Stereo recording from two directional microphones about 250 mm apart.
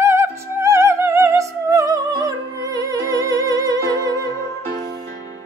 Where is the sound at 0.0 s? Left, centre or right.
Centre.